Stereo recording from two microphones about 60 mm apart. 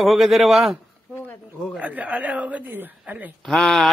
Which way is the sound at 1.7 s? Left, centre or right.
Right.